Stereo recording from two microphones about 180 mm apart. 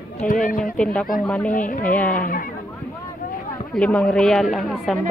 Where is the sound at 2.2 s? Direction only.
50° left (ahead or behind).